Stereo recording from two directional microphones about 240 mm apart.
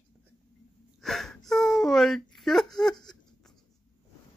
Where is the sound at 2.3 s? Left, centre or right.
Centre.